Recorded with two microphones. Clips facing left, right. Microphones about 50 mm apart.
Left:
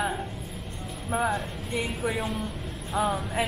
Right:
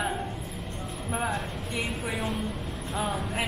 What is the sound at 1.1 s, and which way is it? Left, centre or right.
A woman's voice, centre.